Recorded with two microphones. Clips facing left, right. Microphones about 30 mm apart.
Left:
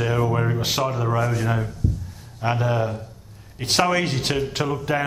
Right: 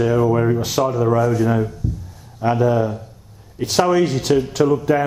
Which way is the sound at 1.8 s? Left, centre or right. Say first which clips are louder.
Even; left.